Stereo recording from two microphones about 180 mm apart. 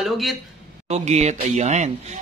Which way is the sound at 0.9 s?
40° right (ahead or behind).